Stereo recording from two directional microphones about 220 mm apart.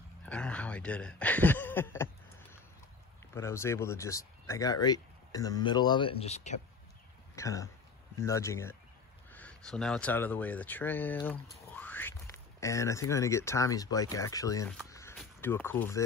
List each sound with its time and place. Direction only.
0.2 s speech: 5° left (ahead or behind)
3.3 s speech: 10° left (ahead or behind); by 6.6 s 30° left (ahead or behind)
7.3 s speech: 15° left (ahead or behind)
14.9 s a sound: 15° left (ahead or behind)
15.1 s speech: 10° left (ahead or behind)